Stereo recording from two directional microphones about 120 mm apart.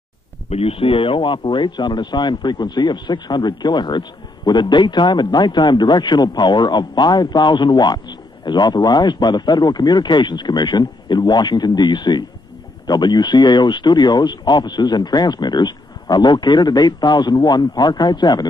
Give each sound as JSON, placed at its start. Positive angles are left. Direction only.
{"t": 0.5, "sound": "a man's voice", "side_deg": 55}